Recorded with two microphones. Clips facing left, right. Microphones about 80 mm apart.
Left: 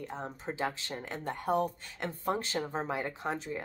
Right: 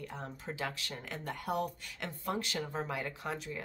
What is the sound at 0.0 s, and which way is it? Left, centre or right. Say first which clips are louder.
Speech: left 4 dB; left.